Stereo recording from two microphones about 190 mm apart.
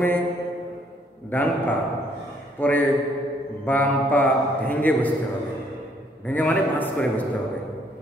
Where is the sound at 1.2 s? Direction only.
10° left (ahead or behind).